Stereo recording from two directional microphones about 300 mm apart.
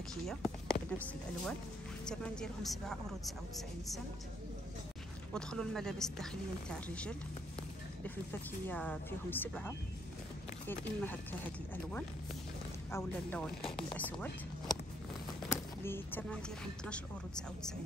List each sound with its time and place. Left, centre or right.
0.1 s speech: centre
5.3 s speech: centre
12.9 s speech: centre
15.4 s a sound: centre
16.8 s speech: centre